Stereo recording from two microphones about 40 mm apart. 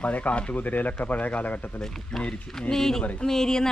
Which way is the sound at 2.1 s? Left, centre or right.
Centre.